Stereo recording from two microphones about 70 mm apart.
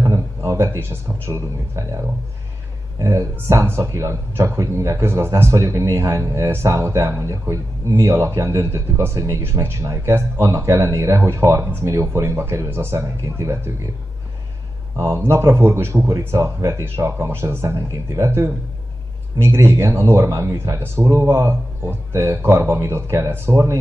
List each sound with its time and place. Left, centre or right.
0.0 s a man's voice: right
15.0 s speech: right